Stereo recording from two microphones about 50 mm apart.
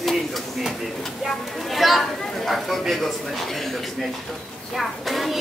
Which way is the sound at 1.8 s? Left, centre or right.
Centre.